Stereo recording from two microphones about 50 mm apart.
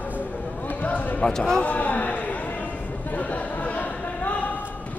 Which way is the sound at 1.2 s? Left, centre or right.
Centre.